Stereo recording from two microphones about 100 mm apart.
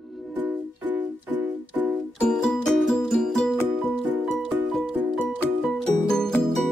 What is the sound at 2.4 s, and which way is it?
Music, 5° left (ahead or behind).